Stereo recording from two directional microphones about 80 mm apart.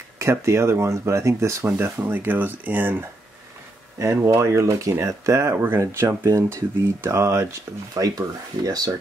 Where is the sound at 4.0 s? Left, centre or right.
Right.